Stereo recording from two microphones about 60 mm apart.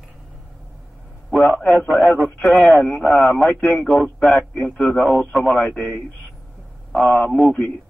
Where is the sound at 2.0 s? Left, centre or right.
Left.